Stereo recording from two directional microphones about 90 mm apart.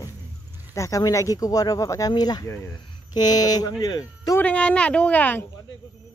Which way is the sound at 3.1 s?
50° left (ahead or behind).